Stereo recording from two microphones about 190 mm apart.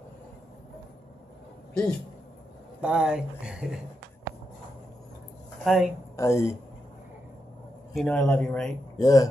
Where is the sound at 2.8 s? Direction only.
5° right (ahead or behind).